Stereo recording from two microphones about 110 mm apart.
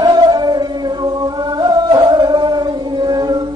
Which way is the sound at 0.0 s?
40° right (ahead or behind).